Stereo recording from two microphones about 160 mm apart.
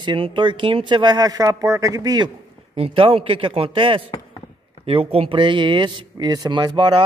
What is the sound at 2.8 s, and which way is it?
Speech, 35° right (ahead or behind).